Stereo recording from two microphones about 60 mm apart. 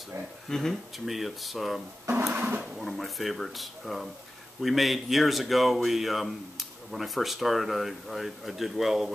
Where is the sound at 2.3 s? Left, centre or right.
Right.